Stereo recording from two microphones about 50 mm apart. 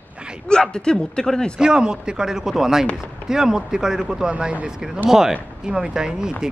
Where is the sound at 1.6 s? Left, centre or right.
Centre.